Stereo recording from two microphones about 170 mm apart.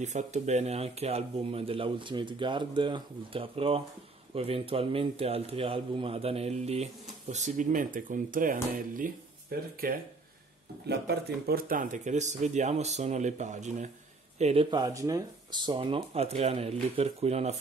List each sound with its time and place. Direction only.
0.0 s a man's voice: 45° right (ahead or behind); by 9.7 s 60° right (ahead or behind)
10.9 s a man's voice: 70° right (ahead or behind); by 17.6 s 40° right (ahead or behind)